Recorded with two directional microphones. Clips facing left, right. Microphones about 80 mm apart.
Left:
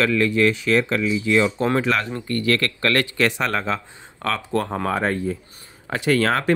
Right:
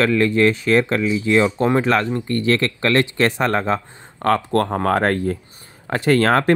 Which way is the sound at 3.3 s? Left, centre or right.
Right.